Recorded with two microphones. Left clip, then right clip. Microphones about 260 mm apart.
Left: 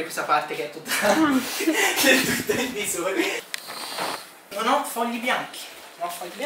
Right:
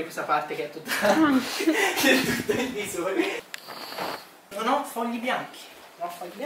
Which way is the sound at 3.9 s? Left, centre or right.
Centre.